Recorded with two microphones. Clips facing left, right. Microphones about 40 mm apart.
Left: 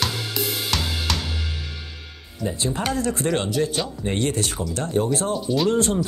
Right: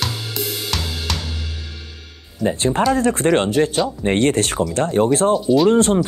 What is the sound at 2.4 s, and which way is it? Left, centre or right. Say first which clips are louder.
Speech: right 7 dB; right.